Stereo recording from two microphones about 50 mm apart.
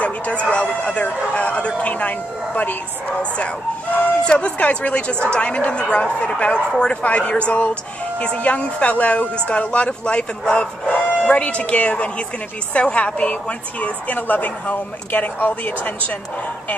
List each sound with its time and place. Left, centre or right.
0.0 s a woman's voice: left